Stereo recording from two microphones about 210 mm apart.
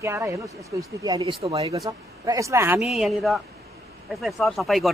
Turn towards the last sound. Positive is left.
turn(degrees=0)  # may be behind; listen again after turning